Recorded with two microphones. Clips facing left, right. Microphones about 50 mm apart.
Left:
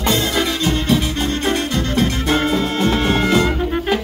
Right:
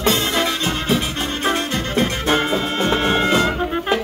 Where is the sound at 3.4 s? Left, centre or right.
Centre.